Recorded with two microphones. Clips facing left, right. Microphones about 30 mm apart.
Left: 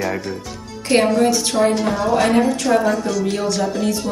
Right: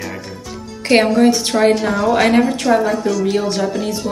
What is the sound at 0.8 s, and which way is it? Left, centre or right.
A woman's voice, right.